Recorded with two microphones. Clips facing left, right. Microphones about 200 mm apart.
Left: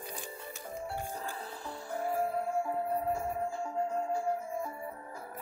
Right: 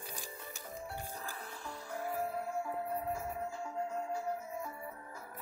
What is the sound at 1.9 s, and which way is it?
Music, 30° left (ahead or behind).